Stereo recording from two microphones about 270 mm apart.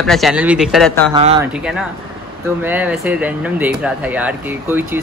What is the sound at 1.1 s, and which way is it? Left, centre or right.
Speech, centre.